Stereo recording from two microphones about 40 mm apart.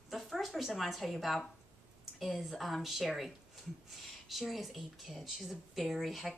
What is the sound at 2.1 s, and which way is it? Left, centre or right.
A woman's voice, centre.